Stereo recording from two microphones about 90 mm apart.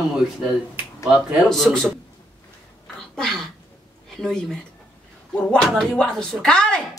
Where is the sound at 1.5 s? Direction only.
5° left (ahead or behind).